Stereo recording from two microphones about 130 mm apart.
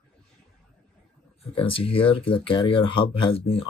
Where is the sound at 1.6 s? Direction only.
45° left (ahead or behind).